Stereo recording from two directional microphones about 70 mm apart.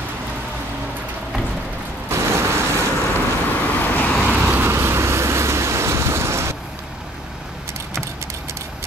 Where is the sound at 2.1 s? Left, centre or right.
Right.